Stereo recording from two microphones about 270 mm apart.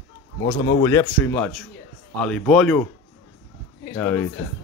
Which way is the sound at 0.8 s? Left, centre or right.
Centre.